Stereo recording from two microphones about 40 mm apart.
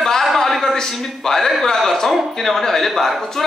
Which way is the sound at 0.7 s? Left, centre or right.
Centre.